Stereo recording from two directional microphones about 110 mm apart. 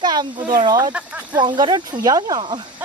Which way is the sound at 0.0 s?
40° right (ahead or behind).